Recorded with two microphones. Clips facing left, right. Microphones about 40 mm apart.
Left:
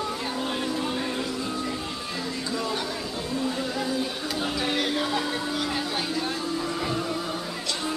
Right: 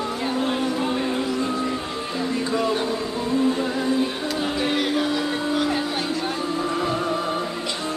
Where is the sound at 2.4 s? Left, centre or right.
Right.